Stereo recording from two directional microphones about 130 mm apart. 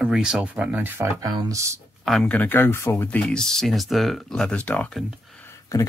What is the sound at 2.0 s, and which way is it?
Speech, centre (ahead or behind).